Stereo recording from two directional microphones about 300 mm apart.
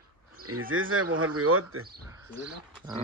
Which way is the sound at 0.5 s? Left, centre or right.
Right.